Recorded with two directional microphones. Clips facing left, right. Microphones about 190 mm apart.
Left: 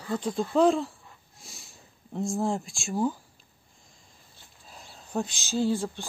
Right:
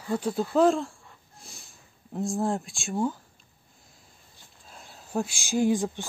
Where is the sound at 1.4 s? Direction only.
Centre (ahead or behind).